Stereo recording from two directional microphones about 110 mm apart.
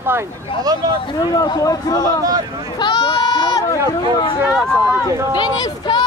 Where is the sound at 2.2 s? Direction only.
35° right (ahead or behind).